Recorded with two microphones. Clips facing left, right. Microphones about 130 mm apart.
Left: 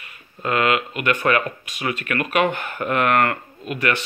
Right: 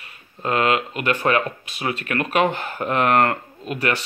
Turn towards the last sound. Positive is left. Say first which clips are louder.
# even
turn(degrees=-35)  # may be behind; listen again after turning